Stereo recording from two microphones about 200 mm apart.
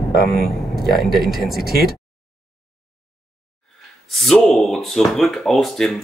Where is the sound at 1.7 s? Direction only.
50° right (ahead or behind).